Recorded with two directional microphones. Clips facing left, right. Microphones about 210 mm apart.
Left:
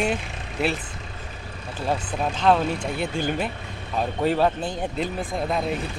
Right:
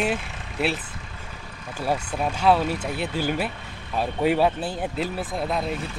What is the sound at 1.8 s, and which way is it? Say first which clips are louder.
Speech: even; 10° right (ahead or behind).